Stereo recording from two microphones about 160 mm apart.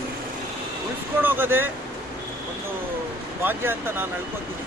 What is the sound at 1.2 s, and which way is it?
Speech, 10° right (ahead or behind).